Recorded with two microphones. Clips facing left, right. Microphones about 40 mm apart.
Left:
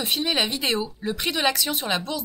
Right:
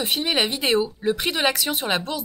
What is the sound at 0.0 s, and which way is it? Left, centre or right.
Speech, centre.